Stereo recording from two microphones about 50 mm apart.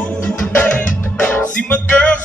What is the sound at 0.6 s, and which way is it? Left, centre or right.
Music, left.